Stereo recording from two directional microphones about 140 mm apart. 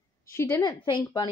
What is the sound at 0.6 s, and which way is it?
Speech, 30° left (ahead or behind).